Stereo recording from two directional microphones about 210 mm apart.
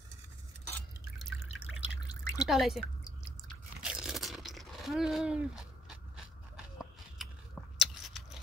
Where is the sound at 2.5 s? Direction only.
Centre (ahead or behind).